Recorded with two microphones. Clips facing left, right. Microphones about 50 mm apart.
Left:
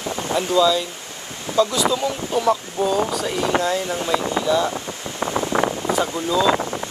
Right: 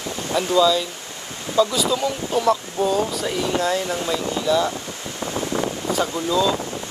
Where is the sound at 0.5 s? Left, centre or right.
Centre.